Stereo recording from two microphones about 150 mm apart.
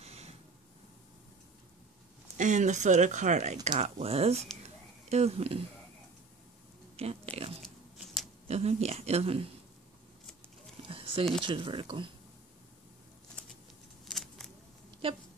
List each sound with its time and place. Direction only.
0.0 s snort: 45° right (ahead or behind)
2.3 s speech: 55° right (ahead or behind)
4.6 s a sound: 45° right (ahead or behind)
7.0 s speech: 40° right (ahead or behind)
7.6 s biting: centre (ahead or behind)
8.5 s speech: 45° right (ahead or behind)
10.9 s a sound: 40° right (ahead or behind)
11.4 s speech: 35° right (ahead or behind)
14.0 s a sound: 5° left (ahead or behind)
15.0 s speech: 40° right (ahead or behind)